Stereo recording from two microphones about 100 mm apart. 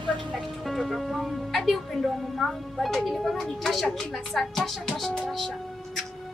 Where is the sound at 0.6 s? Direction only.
Centre (ahead or behind).